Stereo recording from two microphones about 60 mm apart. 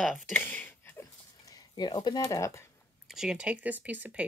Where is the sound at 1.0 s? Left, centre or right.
Left.